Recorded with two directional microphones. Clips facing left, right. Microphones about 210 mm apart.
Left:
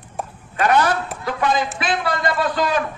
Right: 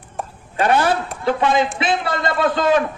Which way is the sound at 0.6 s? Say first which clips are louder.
Right 1 dB; 30° right (ahead or behind).